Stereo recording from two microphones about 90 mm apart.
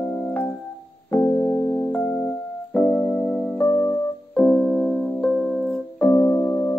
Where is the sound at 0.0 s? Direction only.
10° left (ahead or behind).